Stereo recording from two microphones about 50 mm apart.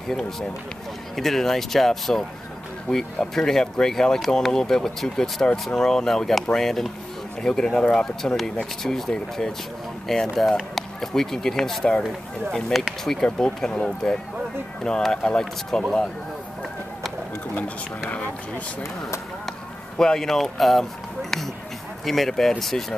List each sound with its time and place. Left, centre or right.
0.1 s speech: centre
2.9 s speech: left
3.3 s speech: centre
8.8 s speech: centre
13.0 s speech: centre
18.8 s speech: left
20.0 s speech: centre